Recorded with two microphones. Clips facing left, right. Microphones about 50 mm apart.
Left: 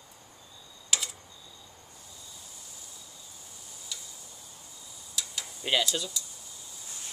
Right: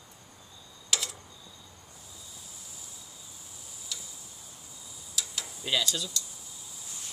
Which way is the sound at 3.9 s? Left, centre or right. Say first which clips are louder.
Right 1 dB; centre.